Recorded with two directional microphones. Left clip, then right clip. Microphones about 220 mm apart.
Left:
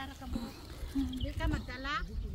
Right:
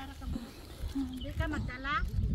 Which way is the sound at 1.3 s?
20° left (ahead or behind).